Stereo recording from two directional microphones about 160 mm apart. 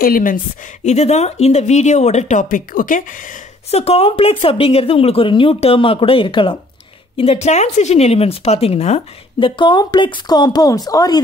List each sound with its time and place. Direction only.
0.0 s speech: 65° left (ahead or behind)
0.8 s speech: 45° left (ahead or behind)
3.7 s speech: 40° left (ahead or behind)
7.2 s speech: 40° left (ahead or behind)
9.6 s a woman's voice: 30° left (ahead or behind)